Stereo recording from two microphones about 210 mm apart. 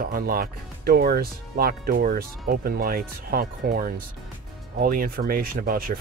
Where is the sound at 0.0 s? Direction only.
45° right (ahead or behind).